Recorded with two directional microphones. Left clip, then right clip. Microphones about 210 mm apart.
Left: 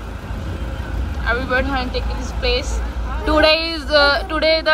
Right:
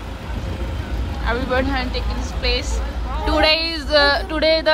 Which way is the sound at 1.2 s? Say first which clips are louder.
Left 2 dB; 15° right (ahead or behind).